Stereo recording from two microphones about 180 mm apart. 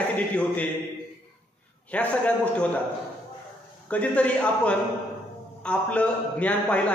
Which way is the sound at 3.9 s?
5° left (ahead or behind).